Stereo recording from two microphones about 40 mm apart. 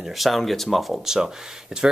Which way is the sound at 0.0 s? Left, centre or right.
Centre.